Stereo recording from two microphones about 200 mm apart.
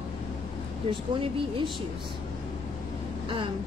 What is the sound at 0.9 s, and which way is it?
Speech, 25° right (ahead or behind).